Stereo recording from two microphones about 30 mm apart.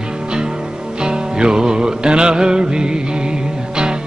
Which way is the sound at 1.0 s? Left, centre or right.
Right.